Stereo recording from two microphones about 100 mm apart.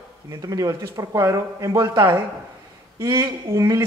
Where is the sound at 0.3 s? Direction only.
35° right (ahead or behind).